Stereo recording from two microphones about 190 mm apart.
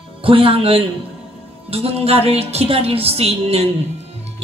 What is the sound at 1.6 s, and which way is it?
A woman's voice, 30° right (ahead or behind).